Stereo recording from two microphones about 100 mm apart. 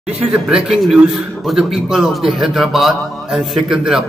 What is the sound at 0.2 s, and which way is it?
A man's voice, 10° right (ahead or behind).